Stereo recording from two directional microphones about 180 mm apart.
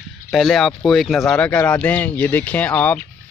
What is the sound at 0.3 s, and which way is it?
Speech, centre (ahead or behind).